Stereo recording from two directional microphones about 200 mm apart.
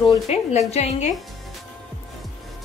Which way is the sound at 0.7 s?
35° left (ahead or behind).